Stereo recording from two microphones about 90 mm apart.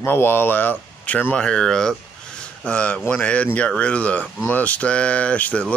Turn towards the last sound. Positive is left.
turn(degrees=15)  # may be behind; listen again after turning